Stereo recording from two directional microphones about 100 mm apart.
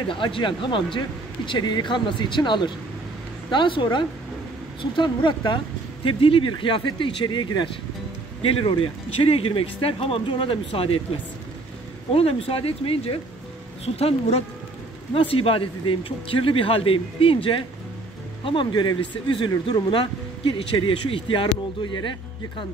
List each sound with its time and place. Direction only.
0.0 s speech: 55° left (ahead or behind)
6.0 s speech: 60° left (ahead or behind)
8.4 s speech: 70° left (ahead or behind)
12.1 s speech: 70° left (ahead or behind)
13.8 s speech: 90° left
15.1 s speech: 70° left (ahead or behind); by 22.1 s 55° left (ahead or behind)